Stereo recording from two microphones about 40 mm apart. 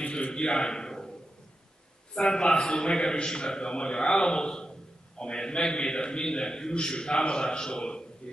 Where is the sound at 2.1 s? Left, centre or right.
Centre.